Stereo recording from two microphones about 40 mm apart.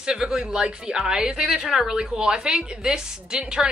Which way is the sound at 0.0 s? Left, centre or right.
Centre.